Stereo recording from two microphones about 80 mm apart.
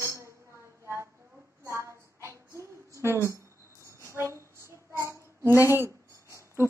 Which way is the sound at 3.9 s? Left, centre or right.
Right.